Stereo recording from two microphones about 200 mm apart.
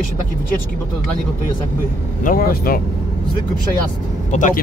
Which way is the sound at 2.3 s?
45° left (ahead or behind).